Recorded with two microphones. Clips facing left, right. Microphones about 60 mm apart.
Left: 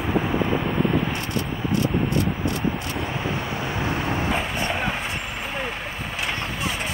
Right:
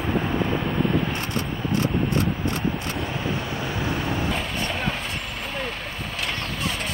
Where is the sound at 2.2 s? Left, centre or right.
Centre.